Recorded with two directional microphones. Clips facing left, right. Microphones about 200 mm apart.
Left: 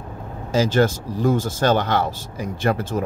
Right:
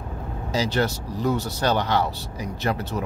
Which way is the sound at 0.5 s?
45° left (ahead or behind).